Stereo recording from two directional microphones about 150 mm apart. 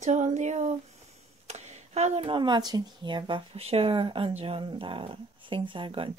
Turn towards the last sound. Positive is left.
turn(degrees=-35)  # may be behind; listen again after turning